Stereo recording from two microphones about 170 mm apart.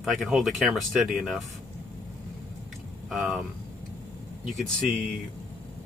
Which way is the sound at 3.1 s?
Centre (ahead or behind).